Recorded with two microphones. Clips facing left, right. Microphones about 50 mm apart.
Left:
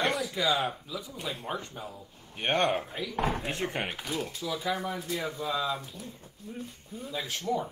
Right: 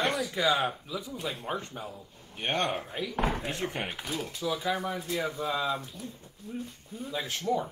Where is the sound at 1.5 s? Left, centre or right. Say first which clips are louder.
Right 1 dB; centre.